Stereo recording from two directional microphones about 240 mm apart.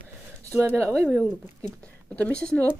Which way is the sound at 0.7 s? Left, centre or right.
Centre.